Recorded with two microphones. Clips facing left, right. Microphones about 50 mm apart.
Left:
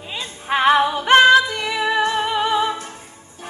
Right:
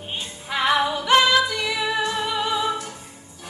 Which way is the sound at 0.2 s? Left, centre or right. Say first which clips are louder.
Left 7 dB; left.